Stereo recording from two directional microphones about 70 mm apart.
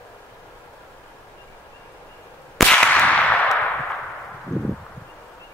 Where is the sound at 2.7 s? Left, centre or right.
Centre.